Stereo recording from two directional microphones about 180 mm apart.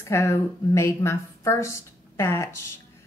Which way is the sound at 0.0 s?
15° left (ahead or behind).